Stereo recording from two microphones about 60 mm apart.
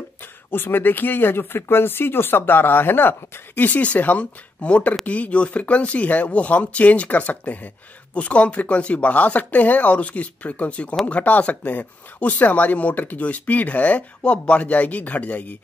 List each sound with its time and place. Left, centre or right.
0.5 s speech: left